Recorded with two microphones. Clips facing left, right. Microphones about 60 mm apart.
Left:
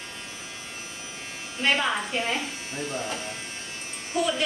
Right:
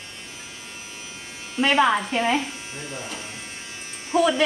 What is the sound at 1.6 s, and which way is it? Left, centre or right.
Speech, right.